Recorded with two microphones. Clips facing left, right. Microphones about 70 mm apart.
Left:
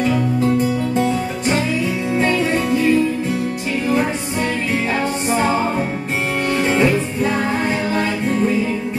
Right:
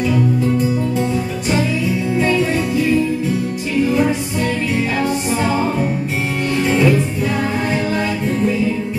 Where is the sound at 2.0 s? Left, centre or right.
Left.